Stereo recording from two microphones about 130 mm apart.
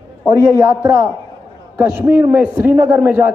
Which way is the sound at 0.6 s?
20° right (ahead or behind).